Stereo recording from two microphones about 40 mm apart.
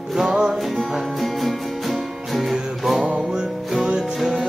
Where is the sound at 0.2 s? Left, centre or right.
Centre.